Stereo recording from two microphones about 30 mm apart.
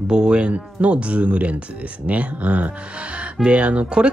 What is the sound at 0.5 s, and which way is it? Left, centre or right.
Speech, right.